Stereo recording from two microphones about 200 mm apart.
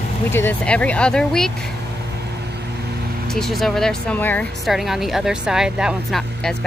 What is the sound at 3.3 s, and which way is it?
Speech, centre (ahead or behind).